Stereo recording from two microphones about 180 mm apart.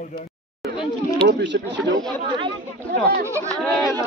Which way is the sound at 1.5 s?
60° right (ahead or behind).